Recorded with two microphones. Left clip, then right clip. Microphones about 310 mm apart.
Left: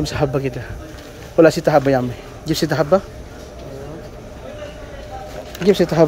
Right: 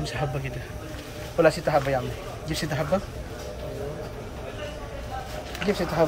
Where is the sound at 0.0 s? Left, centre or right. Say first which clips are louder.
Left 10 dB; centre.